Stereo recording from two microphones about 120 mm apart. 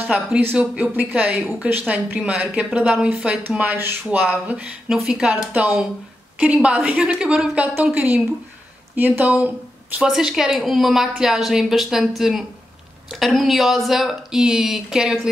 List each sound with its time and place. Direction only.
0.0 s speech: 15° right (ahead or behind)
1.7 s speech: 15° right (ahead or behind)
9.9 s a woman's voice: 5° right (ahead or behind)